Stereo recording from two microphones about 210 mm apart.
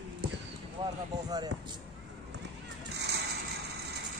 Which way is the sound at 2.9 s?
55° right (ahead or behind).